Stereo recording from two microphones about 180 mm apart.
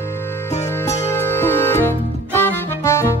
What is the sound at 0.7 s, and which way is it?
Music, 15° left (ahead or behind).